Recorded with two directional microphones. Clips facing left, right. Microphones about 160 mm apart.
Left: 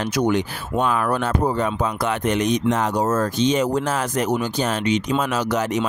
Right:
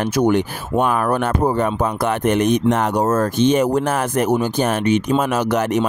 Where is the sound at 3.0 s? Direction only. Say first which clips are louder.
Right 4 dB; 50° right (ahead or behind).